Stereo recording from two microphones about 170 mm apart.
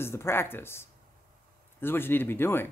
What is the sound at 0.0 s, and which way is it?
Speech, 15° left (ahead or behind).